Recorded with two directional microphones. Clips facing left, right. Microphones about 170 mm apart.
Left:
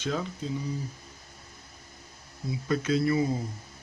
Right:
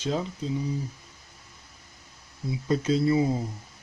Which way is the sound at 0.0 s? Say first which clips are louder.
Right 2 dB; 30° right (ahead or behind).